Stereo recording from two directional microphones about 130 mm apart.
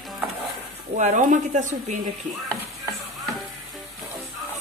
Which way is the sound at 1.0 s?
75° right (ahead or behind).